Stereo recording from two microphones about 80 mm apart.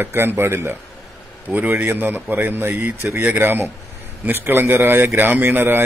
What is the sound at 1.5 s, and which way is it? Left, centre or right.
A man's voice, centre.